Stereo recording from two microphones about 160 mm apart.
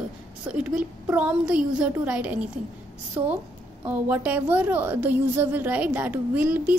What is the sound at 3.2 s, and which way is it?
A woman's voice, 20° right (ahead or behind).